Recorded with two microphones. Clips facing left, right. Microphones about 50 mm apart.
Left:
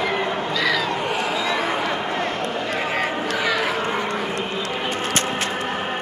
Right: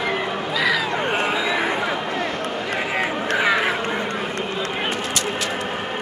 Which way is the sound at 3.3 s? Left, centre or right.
Right.